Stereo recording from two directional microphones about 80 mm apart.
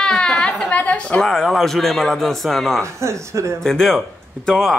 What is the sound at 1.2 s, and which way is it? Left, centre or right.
Speech, centre.